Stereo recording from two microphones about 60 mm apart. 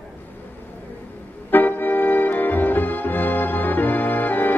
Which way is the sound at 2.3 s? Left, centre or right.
Left.